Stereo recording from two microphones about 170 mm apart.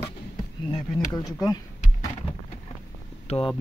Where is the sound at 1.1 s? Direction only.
25° left (ahead or behind).